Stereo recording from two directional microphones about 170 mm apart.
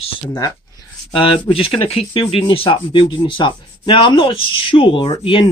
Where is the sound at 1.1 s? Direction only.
30° left (ahead or behind).